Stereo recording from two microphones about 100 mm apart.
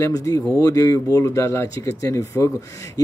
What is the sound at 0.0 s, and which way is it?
Speech, 35° left (ahead or behind).